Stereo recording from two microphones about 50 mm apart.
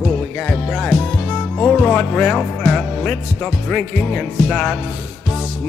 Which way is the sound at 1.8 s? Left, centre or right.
Left.